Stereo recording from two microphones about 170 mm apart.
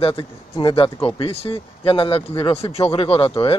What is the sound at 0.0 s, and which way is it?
Speech, 30° left (ahead or behind).